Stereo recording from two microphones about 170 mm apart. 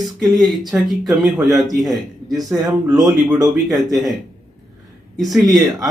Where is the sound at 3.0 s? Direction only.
Centre (ahead or behind).